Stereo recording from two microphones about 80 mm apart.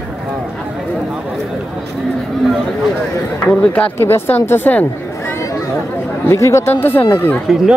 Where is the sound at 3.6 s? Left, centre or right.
Centre.